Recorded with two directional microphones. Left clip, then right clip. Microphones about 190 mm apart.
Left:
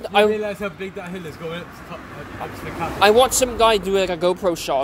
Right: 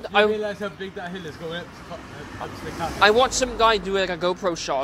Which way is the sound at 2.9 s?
25° left (ahead or behind).